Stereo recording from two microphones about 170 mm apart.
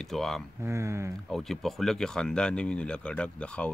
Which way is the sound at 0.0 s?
Centre (ahead or behind).